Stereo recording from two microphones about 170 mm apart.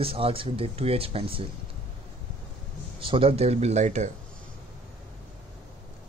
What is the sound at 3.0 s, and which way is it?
A man's voice, 30° right (ahead or behind).